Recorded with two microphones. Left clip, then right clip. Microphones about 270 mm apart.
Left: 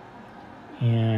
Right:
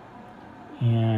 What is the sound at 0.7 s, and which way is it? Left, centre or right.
Speech, centre.